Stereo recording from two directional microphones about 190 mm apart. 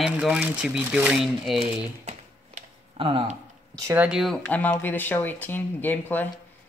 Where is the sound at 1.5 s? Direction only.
35° right (ahead or behind).